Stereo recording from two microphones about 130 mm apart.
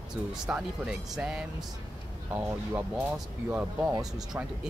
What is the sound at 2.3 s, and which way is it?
Speech, 15° right (ahead or behind).